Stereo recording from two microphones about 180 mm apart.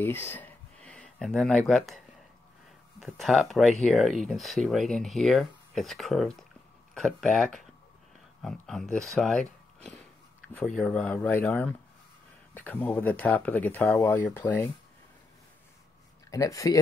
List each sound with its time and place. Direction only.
0.0 s speech: 10° left (ahead or behind)
3.0 s speech: centre (ahead or behind)
10.5 s speech: 5° left (ahead or behind)
16.3 s speech: 20° left (ahead or behind)